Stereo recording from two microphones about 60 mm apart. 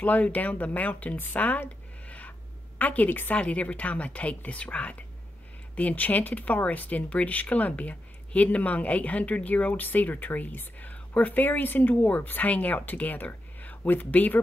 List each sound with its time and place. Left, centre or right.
0.0 s speech: left
3.3 s speech: left